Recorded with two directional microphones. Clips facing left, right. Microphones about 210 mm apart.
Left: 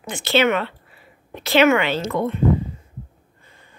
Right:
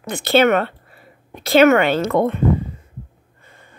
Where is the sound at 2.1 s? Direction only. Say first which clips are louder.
Right 5 dB; 75° right (ahead or behind).